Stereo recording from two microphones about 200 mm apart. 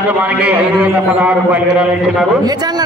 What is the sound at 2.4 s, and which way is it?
Speech, 20° right (ahead or behind).